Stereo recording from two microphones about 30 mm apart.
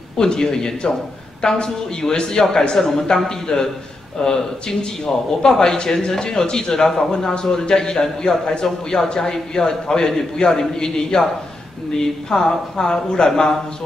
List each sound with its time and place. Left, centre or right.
0.2 s speech: centre
8.6 s a man's voice: centre
9.1 s a man's voice: left